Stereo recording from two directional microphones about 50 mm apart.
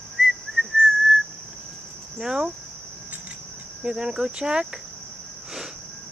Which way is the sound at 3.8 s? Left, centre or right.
Centre.